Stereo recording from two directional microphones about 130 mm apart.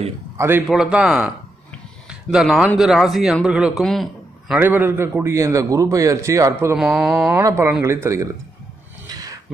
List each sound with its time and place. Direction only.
0.4 s speech: 15° right (ahead or behind)
0.7 s a man's voice: 5° right (ahead or behind)
4.6 s a man's voice: 15° right (ahead or behind)
6.8 s speech: centre (ahead or behind)
7.3 s a man's voice: 20° right (ahead or behind)
9.1 s a sound: 30° right (ahead or behind)